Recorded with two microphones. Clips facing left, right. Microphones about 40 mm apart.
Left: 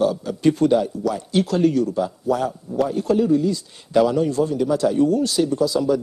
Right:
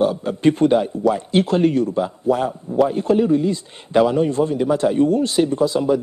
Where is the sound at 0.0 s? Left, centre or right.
Right.